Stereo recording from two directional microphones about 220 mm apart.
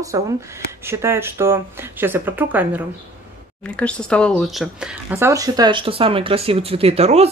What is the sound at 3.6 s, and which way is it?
Speech, 5° left (ahead or behind).